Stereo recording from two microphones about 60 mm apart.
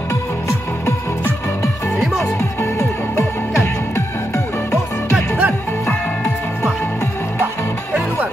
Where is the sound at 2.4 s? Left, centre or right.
Left.